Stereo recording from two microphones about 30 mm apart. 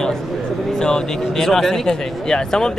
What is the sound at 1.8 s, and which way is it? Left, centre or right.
Speech, left.